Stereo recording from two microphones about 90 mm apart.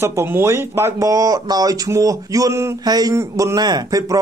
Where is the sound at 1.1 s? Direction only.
45° right (ahead or behind).